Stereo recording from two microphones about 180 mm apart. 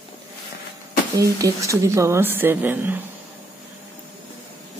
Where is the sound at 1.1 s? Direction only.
20° right (ahead or behind).